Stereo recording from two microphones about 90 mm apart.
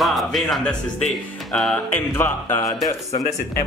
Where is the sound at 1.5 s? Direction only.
10° left (ahead or behind).